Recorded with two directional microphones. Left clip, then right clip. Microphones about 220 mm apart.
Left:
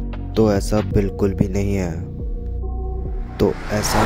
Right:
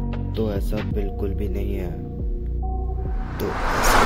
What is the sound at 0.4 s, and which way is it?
Speech, 50° left (ahead or behind).